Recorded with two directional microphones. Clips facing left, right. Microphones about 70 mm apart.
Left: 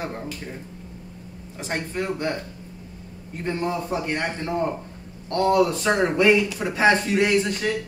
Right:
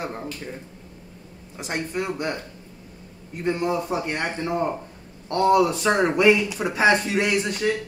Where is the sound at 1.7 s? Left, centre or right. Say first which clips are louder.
Even; centre.